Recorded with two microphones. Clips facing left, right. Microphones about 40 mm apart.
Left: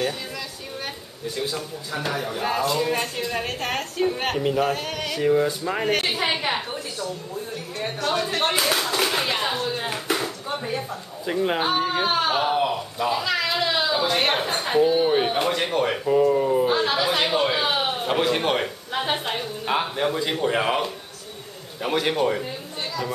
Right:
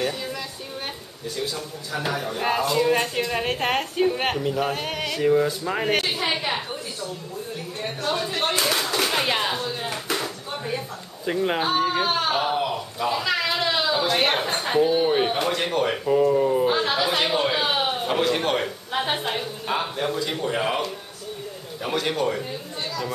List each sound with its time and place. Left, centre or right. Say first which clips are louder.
1.3 s a man's voice: left 1 dB; centre
1.9 s speech: right 1 dB; centre
3.4 s a woman's voice: right 3 dB; right
4.0 s speech: left 1 dB; centre
4.8 s speech: right 1 dB; centre
5.1 s speech: even; centre
6.4 s a sound: left 1 dB; centre
8.4 s clapping: even; centre
9.2 s a sound: right 1 dB; centre
9.6 s a sound: left 2 dB; centre
11.2 s speech: even; centre
19.6 s a man's voice: left 3 dB; centre